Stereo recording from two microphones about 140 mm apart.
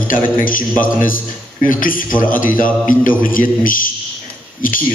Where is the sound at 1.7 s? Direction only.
80° left.